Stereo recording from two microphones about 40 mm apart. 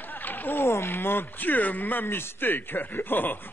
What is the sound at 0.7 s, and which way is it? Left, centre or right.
A man's voice, left.